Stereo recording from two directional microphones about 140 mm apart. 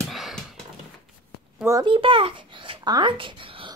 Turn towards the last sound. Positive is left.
turn(degrees=-40)  # may be behind; listen again after turning